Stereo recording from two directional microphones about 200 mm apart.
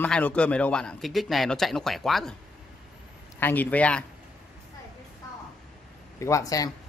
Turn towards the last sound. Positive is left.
turn(degrees=15)  # may be behind; listen again after turning